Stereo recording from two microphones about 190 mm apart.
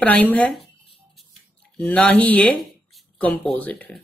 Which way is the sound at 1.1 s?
5° left (ahead or behind).